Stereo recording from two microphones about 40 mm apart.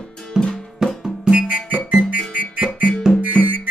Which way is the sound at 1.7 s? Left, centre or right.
Right.